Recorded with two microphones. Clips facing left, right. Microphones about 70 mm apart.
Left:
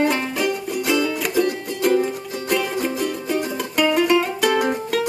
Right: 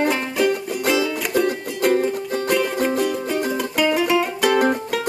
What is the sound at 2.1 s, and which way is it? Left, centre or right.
Music, right.